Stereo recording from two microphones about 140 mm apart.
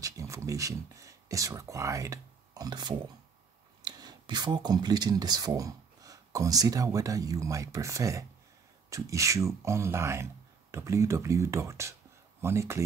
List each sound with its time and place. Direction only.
0.0 s speech: 25° right (ahead or behind)